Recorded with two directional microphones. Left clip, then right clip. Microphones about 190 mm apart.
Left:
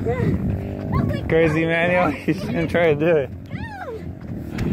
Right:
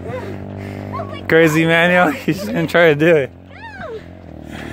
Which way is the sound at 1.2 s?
45° right (ahead or behind).